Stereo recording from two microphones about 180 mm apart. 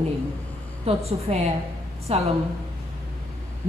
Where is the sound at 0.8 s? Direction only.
35° right (ahead or behind).